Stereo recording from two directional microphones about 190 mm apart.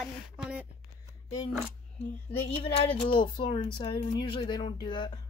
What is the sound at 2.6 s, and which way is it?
Speech, 25° left (ahead or behind).